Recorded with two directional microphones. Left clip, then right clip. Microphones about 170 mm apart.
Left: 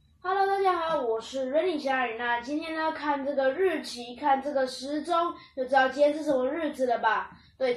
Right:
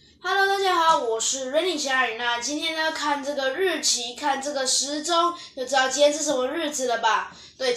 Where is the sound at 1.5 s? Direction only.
15° right (ahead or behind).